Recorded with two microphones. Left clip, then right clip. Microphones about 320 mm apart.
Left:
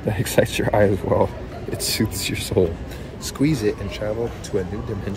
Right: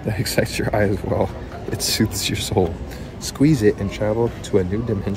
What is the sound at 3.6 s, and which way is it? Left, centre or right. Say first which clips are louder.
Speech: right 5 dB; right.